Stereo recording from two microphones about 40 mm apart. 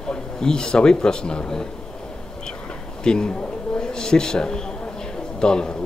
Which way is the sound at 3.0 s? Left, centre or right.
Centre.